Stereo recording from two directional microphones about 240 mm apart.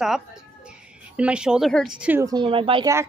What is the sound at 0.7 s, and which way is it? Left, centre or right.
A woman's voice, centre.